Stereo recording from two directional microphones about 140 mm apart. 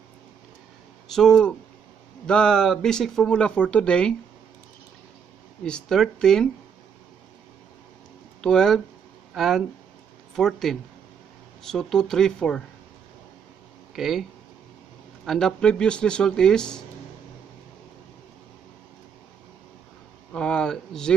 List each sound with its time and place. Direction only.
1.0 s speech: 5° left (ahead or behind)
5.6 s speech: 5° left (ahead or behind)
8.4 s speech: 5° left (ahead or behind)
13.9 s speech: centre (ahead or behind)
15.2 s speech: 5° left (ahead or behind)
20.3 s speech: 5° left (ahead or behind)